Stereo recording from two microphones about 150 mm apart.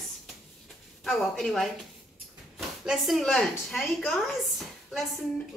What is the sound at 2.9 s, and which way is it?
Speech, centre (ahead or behind).